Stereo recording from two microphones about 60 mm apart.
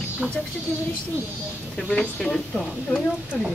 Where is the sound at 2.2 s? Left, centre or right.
Centre.